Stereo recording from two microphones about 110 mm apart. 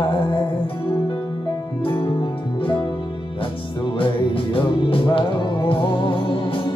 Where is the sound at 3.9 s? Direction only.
55° left (ahead or behind).